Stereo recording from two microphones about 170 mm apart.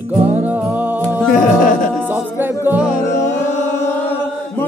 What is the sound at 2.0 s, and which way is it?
Music, 10° right (ahead or behind).